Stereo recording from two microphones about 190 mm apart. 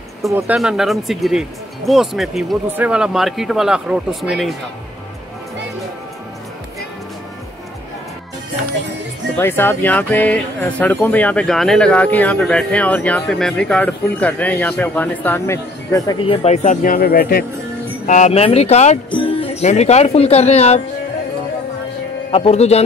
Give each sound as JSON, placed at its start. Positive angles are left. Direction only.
{"t": 0.3, "sound": "speech", "side_deg": -15}
{"t": 0.6, "sound": "speech", "side_deg": 0}
{"t": 9.4, "sound": "speech", "side_deg": 10}
{"t": 16.2, "sound": "speech", "side_deg": 30}
{"t": 18.0, "sound": "speech", "side_deg": 40}
{"t": 22.3, "sound": "speech", "side_deg": 35}